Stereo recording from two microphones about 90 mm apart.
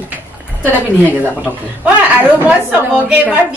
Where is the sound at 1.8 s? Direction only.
15° right (ahead or behind).